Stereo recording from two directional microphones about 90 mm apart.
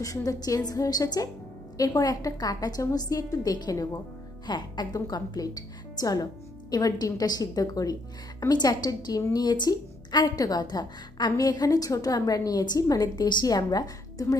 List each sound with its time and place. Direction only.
0.0 s a woman's voice: 40° left (ahead or behind)
13.1 s a woman's voice: 55° left (ahead or behind)